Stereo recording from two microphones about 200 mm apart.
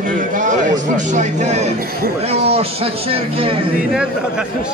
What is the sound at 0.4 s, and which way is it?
A man's voice, 40° right (ahead or behind).